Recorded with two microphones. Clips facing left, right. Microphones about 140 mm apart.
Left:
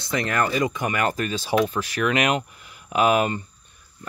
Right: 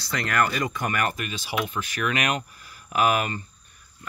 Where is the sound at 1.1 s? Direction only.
35° left (ahead or behind).